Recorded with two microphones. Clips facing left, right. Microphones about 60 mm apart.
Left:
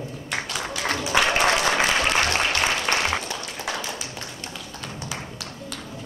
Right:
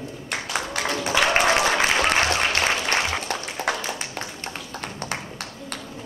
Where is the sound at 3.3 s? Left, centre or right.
Right.